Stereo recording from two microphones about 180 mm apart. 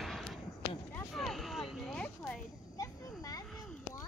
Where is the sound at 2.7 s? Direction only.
20° left (ahead or behind).